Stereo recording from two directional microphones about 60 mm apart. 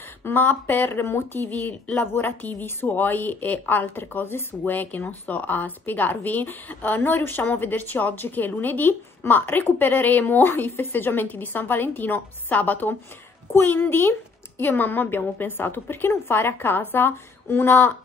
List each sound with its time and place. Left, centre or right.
0.2 s speech: left
1.5 s speech: left